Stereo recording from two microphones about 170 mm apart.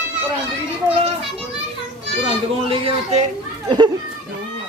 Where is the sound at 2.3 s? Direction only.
30° right (ahead or behind).